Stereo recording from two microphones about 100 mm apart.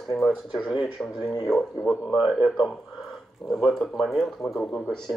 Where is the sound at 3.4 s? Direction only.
5° left (ahead or behind).